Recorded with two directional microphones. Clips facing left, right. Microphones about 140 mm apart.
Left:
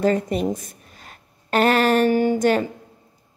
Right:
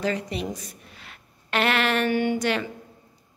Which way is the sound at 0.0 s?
45° left (ahead or behind).